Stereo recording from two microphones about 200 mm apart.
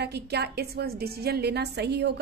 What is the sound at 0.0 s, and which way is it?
A woman's voice, 55° right (ahead or behind).